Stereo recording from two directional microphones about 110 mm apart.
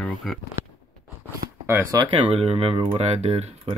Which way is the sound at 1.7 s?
25° right (ahead or behind).